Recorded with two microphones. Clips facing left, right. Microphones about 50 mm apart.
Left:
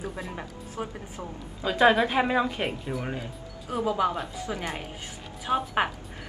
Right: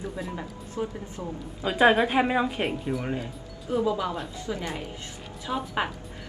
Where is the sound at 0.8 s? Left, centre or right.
Left.